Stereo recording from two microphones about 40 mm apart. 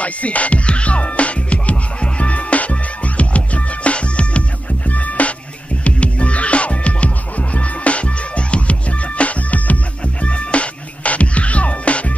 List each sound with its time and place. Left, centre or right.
0.0 s music: left